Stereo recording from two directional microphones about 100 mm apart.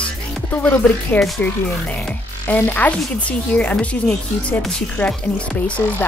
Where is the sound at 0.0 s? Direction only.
20° left (ahead or behind).